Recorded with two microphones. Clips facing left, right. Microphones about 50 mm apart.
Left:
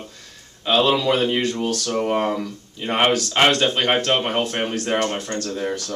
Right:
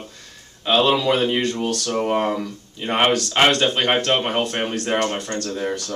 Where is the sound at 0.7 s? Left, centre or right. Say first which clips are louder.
Even; centre.